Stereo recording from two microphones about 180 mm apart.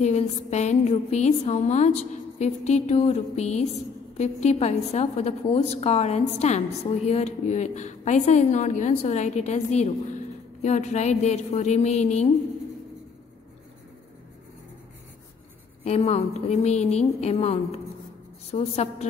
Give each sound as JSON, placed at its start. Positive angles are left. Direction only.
{"t": 0.0, "sound": "a woman's voice", "side_deg": 40}
{"t": 15.8, "sound": "a woman's voice", "side_deg": 35}